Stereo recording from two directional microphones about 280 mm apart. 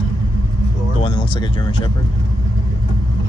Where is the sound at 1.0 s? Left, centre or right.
Centre.